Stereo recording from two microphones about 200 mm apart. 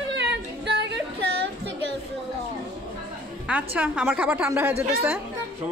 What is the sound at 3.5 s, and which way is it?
A woman's voice, 5° right (ahead or behind).